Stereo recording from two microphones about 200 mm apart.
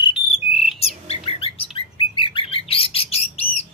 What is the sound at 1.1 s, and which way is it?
Bird, 30° left (ahead or behind).